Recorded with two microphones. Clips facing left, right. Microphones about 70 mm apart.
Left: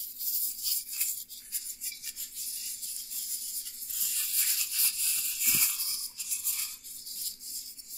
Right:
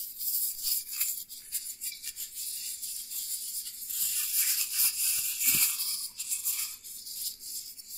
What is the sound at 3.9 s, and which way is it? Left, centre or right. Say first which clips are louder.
Music: even; centre.